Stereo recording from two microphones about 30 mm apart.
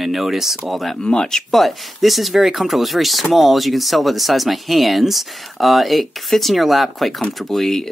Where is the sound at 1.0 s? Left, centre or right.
Left.